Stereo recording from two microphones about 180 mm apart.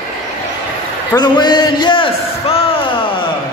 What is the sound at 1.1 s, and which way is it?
A man's voice, 20° left (ahead or behind).